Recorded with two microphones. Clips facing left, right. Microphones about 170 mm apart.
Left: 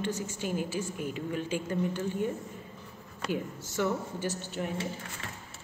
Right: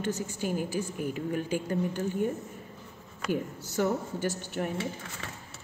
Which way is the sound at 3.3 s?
45° right (ahead or behind).